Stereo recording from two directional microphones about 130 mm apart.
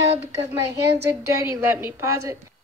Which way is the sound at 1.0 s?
20° right (ahead or behind).